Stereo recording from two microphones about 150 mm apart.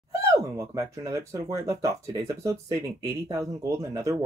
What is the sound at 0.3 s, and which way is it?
Speech, 20° right (ahead or behind).